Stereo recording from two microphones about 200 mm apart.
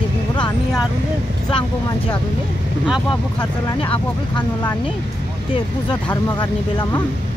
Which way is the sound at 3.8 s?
25° left (ahead or behind).